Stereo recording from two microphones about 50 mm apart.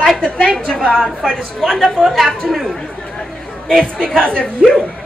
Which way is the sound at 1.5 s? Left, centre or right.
Centre.